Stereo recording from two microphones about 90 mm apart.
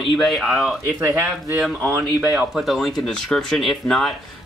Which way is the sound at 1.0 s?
25° right (ahead or behind).